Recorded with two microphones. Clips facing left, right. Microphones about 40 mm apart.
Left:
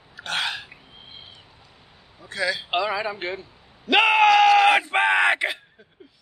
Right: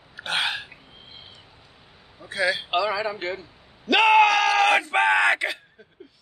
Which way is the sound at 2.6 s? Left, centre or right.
Centre.